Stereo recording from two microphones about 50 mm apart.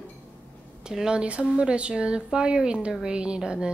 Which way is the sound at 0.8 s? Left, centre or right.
Centre.